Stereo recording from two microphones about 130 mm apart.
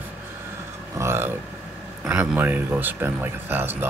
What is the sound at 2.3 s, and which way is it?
Speech, 15° right (ahead or behind).